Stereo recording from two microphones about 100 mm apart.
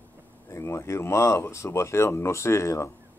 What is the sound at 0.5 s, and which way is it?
Speech, 30° left (ahead or behind).